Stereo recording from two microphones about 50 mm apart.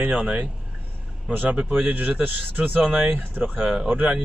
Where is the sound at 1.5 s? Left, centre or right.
Right.